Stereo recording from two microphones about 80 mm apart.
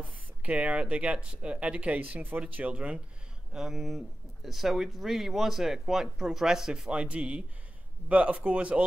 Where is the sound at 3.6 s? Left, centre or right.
Centre.